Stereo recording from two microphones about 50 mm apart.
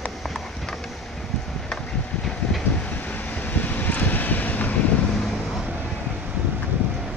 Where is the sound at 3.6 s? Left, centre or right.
Left.